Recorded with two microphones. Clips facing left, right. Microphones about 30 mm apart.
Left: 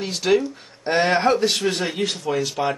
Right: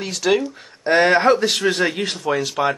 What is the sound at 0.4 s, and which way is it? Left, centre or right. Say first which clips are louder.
Speech: right 1 dB; right.